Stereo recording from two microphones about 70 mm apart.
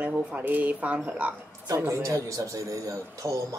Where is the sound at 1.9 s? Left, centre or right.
Right.